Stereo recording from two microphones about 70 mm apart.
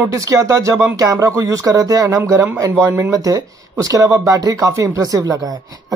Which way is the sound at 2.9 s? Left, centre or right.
Right.